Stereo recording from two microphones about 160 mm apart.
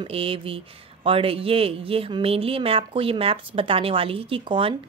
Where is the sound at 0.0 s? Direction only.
35° right (ahead or behind).